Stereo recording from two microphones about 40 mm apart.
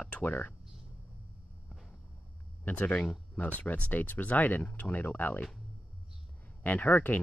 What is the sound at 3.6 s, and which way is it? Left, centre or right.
Speech, left.